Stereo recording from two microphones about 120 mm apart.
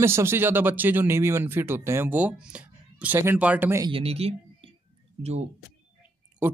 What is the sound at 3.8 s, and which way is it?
Speech, 50° right (ahead or behind).